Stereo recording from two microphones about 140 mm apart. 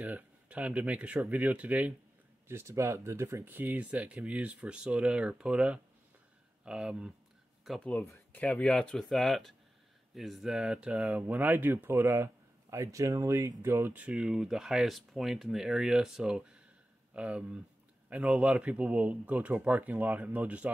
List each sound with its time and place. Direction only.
0.0 s speech: 10° right (ahead or behind)